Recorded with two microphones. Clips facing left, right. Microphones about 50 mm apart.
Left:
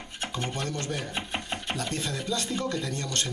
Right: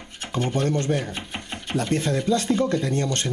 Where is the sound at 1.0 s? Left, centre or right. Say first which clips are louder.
Right 2 dB; centre.